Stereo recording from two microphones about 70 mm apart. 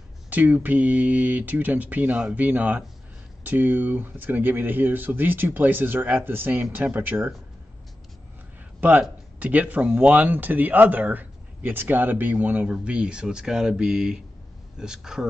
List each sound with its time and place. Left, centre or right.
0.3 s speech: right
9.4 s speech: right
12.6 s speech: centre